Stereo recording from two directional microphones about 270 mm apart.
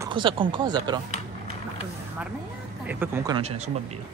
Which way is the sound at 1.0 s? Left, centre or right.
Left.